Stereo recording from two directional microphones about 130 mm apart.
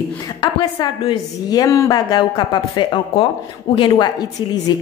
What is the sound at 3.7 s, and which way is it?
Speech, 45° left (ahead or behind).